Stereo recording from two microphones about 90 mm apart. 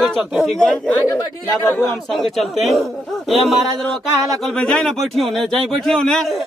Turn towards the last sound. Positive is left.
turn(degrees=5)  # may be behind; listen again after turning